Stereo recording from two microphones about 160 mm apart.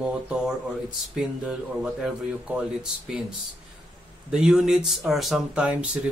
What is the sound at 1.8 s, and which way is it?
Speech, 5° right (ahead or behind).